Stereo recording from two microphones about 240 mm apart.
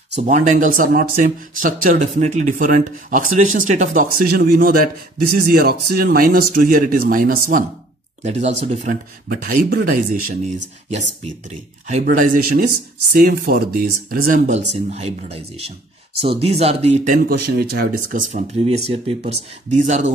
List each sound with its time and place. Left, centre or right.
0.1 s speech: right